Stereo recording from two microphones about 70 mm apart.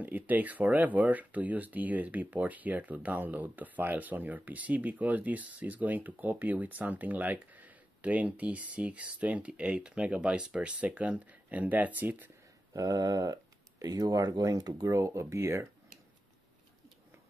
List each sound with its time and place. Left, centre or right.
0.0 s speech: right
12.7 s speech: right
14.9 s speech: right